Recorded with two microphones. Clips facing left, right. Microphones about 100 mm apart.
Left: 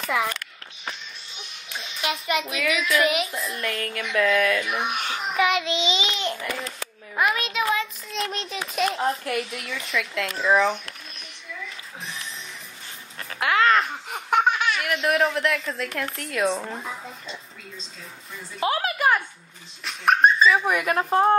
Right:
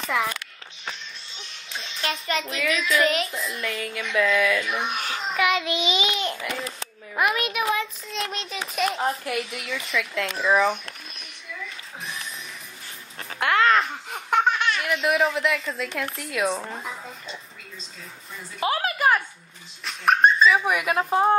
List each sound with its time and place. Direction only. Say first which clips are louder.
0.0 s a child's voice: even; centre (ahead or behind)
1.7 s a child's voice: left 1 dB; 5° left (ahead or behind)
5.0 s a child's voice: left 1 dB; 25° left (ahead or behind)
7.3 s speech: right 1 dB; 25° left (ahead or behind)
8.1 s a child's voice: left 1 dB; centre (ahead or behind)
13.4 s a sound: even; centre (ahead or behind)
14.1 s speech: left 1 dB; 15° left (ahead or behind)
18.6 s a child's voice: even; centre (ahead or behind)